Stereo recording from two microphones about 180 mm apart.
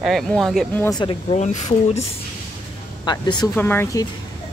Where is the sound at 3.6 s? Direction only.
10° left (ahead or behind).